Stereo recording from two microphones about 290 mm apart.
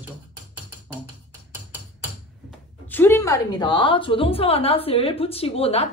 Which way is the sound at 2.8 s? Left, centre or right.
Centre.